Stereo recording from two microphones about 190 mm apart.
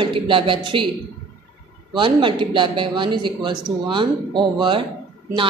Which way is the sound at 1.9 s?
25° right (ahead or behind).